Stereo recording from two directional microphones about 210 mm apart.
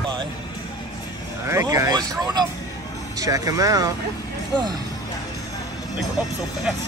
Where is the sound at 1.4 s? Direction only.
15° right (ahead or behind).